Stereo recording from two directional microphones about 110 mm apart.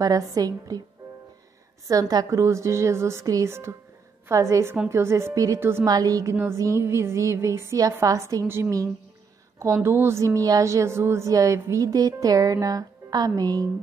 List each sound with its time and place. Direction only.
0.0 s a woman's voice: 35° right (ahead or behind)
1.9 s a woman's voice: 35° right (ahead or behind)
5.9 s a woman's voice: 35° right (ahead or behind)
9.8 s a woman's voice: 25° right (ahead or behind)